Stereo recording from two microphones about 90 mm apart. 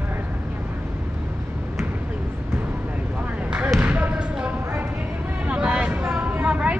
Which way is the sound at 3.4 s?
15° right (ahead or behind).